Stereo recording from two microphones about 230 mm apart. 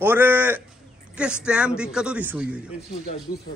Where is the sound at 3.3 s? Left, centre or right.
Left.